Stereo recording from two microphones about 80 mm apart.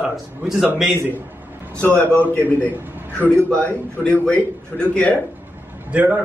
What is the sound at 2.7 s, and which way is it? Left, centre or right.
Speech, right.